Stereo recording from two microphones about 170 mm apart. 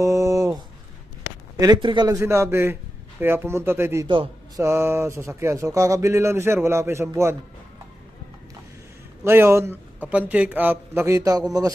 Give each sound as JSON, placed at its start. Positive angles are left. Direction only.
{"t": 0.0, "sound": "a sound", "side_deg": -20}
{"t": 1.6, "sound": "a man's voice", "side_deg": -25}
{"t": 9.2, "sound": "a man's voice", "side_deg": -15}